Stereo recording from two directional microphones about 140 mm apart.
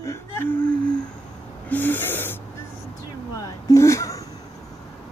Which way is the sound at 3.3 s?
25° left (ahead or behind).